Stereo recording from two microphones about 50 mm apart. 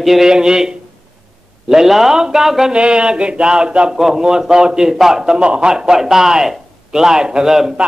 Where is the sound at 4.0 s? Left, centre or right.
Centre.